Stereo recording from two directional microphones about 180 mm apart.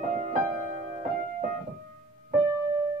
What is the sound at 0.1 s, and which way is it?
Music, 40° right (ahead or behind).